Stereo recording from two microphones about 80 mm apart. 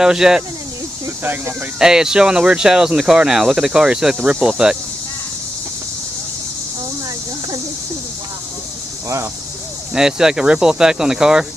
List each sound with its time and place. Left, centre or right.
0.0 s speech: centre
1.2 s speech: right
1.8 s speech: centre
9.9 s speech: centre